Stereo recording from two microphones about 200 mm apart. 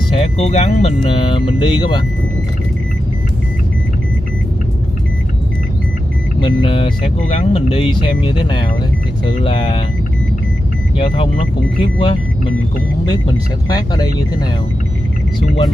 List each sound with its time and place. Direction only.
0.1 s speech: 30° left (ahead or behind)
6.4 s speech: 25° left (ahead or behind)
11.8 s speech: 25° left (ahead or behind)
13.7 s speech: 20° left (ahead or behind)